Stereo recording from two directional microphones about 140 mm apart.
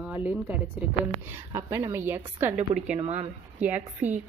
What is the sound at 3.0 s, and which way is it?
Speech, 40° right (ahead or behind).